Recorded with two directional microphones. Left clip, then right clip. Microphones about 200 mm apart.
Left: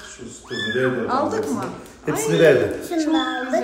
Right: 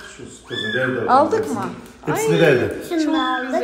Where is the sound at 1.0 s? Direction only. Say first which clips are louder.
Right 6 dB; 5° left (ahead or behind).